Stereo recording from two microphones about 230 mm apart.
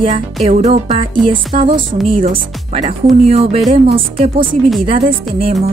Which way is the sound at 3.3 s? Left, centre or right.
Right.